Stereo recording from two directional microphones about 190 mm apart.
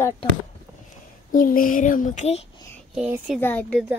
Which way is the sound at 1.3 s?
45° left (ahead or behind).